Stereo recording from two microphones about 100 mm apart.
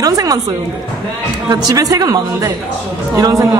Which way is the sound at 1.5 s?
40° right (ahead or behind).